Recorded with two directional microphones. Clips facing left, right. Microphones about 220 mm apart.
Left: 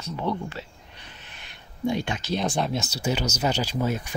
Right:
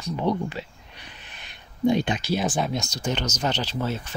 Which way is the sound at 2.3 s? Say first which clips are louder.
Even; centre (ahead or behind).